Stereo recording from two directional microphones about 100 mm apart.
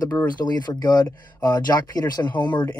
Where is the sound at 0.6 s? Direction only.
40° left (ahead or behind).